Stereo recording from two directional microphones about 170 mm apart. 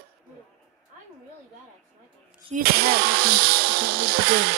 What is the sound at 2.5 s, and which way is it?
Speech, 65° right (ahead or behind).